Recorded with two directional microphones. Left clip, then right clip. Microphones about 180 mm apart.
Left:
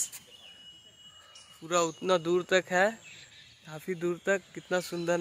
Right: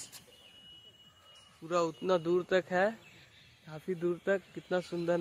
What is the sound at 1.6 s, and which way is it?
Speech, 25° left (ahead or behind).